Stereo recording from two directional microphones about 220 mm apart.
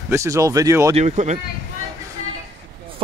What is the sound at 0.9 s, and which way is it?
Speech, 30° right (ahead or behind).